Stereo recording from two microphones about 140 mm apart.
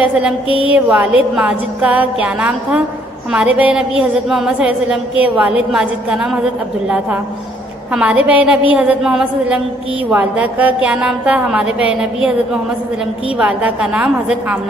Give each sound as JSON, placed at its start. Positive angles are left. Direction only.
{"t": 0.7, "sound": "a woman's voice", "side_deg": -10}
{"t": 7.9, "sound": "a woman's voice", "side_deg": -10}
{"t": 13.4, "sound": "a woman's voice", "side_deg": -10}